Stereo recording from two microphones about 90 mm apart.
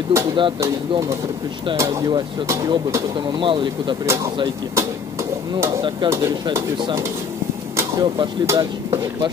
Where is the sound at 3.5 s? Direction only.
65° right (ahead or behind).